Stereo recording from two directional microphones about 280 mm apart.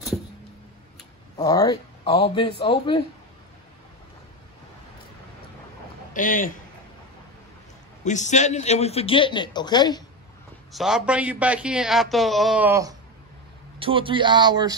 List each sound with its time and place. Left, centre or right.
1.3 s speech: centre
6.1 s a man's voice: left
8.0 s a man's voice: left
10.7 s a man's voice: centre